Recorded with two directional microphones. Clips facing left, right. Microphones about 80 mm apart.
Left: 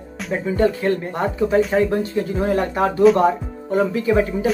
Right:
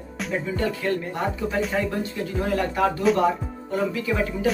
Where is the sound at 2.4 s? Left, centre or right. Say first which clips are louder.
Left 2 dB; left.